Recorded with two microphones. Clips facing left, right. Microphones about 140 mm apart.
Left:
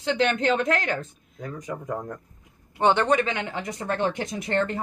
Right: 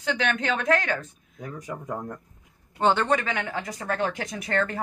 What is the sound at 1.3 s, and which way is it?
Speech, 5° right (ahead or behind).